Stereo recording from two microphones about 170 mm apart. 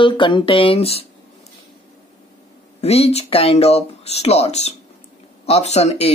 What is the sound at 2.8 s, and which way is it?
Speech, 35° left (ahead or behind).